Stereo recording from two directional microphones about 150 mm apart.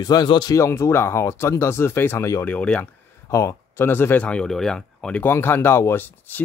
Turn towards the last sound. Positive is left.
turn(degrees=15)  # may be behind; listen again after turning